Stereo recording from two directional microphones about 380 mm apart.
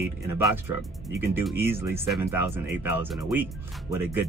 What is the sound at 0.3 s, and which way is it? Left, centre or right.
Speech, centre.